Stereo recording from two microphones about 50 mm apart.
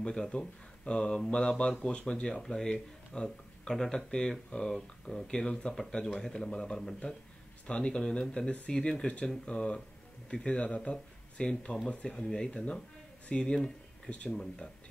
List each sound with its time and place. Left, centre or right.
0.0 s speech: centre